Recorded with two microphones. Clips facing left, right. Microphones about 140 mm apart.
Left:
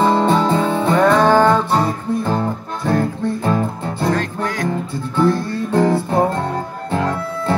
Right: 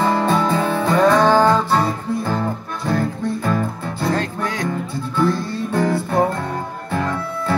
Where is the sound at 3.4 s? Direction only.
25° left (ahead or behind).